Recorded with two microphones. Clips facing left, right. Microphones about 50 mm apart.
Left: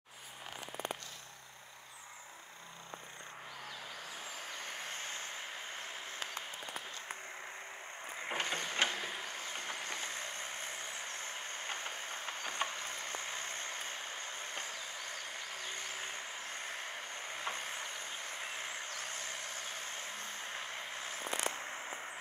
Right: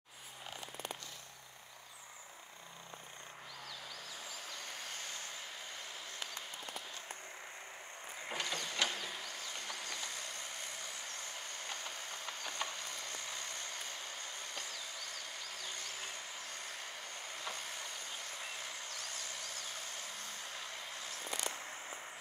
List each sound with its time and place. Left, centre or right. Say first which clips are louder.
4.5 s vehicle: left 4 dB; left
8.3 s vehicle: left 3 dB; left